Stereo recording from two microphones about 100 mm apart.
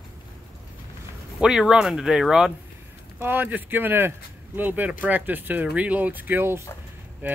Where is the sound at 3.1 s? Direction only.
20° right (ahead or behind).